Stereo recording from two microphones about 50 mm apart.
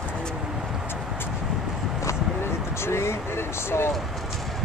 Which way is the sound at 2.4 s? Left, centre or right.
Left.